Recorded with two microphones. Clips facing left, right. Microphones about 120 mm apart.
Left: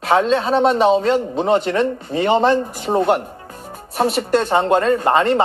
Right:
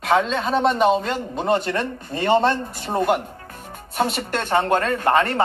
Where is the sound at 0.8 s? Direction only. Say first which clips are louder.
Left 5 dB; centre (ahead or behind).